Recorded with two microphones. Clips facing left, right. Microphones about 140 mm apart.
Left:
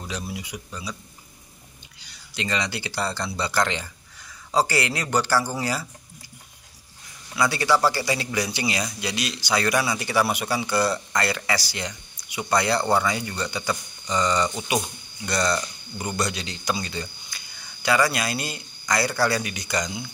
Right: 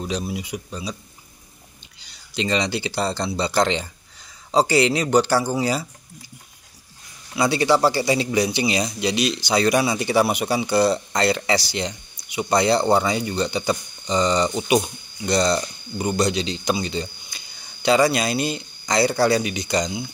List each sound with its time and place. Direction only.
0.0 s speech: 20° right (ahead or behind)
2.0 s speech: 25° right (ahead or behind)
7.3 s speech: 25° right (ahead or behind)